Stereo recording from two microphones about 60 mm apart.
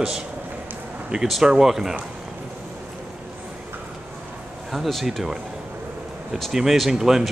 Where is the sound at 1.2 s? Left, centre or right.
Centre.